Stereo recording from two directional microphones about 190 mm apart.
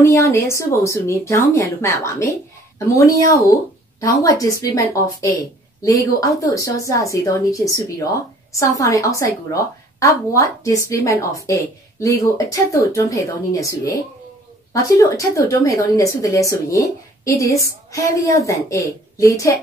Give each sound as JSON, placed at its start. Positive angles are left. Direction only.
{"t": 0.0, "sound": "a woman's voice", "side_deg": 15}
{"t": 4.0, "sound": "a woman's voice", "side_deg": 15}